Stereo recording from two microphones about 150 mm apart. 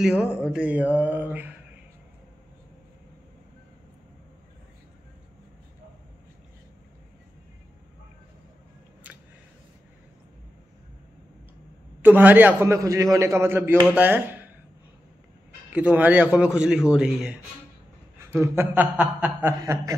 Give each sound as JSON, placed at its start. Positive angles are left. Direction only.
{"t": 0.2, "sound": "a man's voice", "side_deg": -5}
{"t": 9.0, "sound": "a sound", "side_deg": -10}
{"t": 12.0, "sound": "a man's voice", "side_deg": -10}
{"t": 15.7, "sound": "a man's voice", "side_deg": -10}
{"t": 18.4, "sound": "a man's voice", "side_deg": -15}
{"t": 19.6, "sound": "speech", "side_deg": -25}